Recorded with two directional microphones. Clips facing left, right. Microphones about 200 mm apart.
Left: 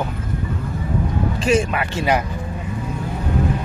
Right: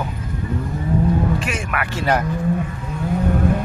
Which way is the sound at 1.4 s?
30° left (ahead or behind).